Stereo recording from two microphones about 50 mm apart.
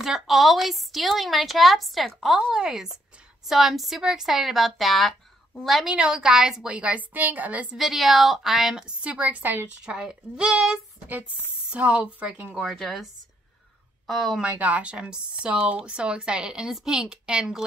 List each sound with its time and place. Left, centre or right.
0.0 s a woman's voice: centre
5.9 s a woman's voice: centre
6.7 s a woman's voice: right
7.7 s a woman's voice: centre
9.0 s speech: right
9.4 s a woman's voice: right
9.8 s a woman's voice: centre; by 12.5 s right
12.6 s a woman's voice: centre
14.0 s a woman's voice: centre
14.4 s a woman's voice: right; by 17.6 s centre